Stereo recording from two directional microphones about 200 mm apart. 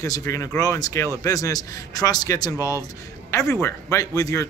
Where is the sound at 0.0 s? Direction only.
15° left (ahead or behind).